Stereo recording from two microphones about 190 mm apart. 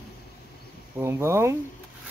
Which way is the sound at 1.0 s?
15° right (ahead or behind).